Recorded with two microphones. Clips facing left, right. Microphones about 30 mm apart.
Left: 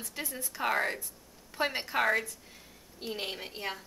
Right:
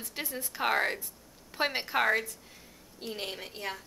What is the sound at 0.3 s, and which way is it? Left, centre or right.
A woman's voice, centre.